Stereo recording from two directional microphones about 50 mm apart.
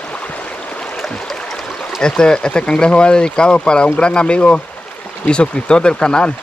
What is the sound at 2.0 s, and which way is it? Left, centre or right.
Speech, centre.